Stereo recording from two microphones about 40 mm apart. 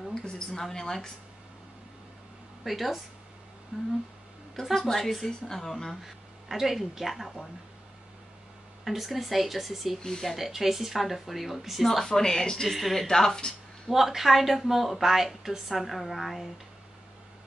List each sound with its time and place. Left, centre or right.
0.1 s a woman's voice: centre
0.7 s a woman's voice: centre
2.6 s a woman's voice: centre
3.7 s speech: centre
4.7 s a woman's voice: centre
6.0 s speech: centre
8.8 s a woman's voice: centre
12.1 s a woman's voice: centre
12.6 s a woman's voice: centre
13.0 s a woman's voice: centre
13.8 s a woman's voice: centre